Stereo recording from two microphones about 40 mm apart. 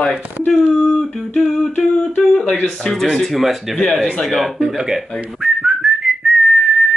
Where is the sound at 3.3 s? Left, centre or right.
Centre.